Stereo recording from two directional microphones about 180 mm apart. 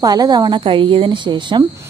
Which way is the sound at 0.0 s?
20° right (ahead or behind).